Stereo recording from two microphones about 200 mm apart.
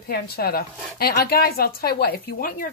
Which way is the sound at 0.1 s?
50° left (ahead or behind).